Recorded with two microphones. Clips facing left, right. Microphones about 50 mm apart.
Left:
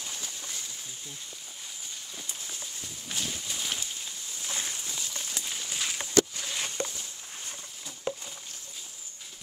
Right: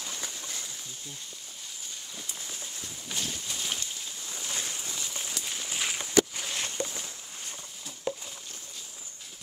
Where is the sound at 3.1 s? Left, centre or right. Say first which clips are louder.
Even; centre.